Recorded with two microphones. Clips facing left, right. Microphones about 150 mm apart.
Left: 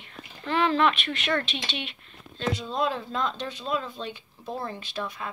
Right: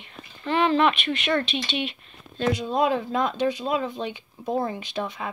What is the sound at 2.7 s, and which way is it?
Speech, 15° right (ahead or behind).